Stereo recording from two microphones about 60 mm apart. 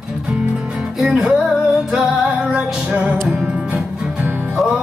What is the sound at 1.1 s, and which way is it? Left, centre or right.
Music, centre.